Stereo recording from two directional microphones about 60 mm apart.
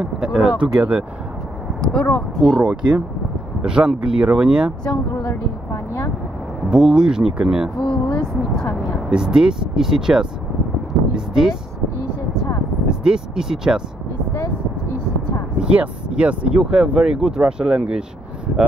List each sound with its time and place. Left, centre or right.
0.0 s speech: centre
1.8 s speech: centre
2.6 s speech: centre
6.7 s speech: centre
7.8 s vehicle: centre
9.1 s speech: centre
12.8 s speech: centre
15.6 s speech: centre